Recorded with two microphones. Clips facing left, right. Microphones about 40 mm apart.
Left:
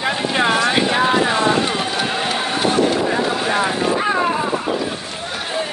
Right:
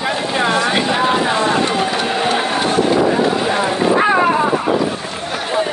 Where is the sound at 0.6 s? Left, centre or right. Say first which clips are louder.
Right 1 dB; centre.